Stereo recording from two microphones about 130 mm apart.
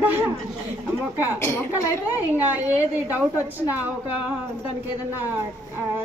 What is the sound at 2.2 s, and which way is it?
A woman's voice, 15° right (ahead or behind).